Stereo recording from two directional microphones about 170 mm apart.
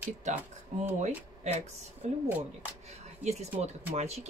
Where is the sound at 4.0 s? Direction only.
40° right (ahead or behind).